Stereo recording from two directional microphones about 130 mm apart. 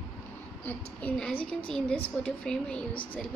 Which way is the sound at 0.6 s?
10° left (ahead or behind).